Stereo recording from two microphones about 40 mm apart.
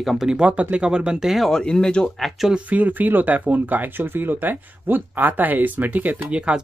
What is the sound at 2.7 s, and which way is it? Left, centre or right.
Speech, right.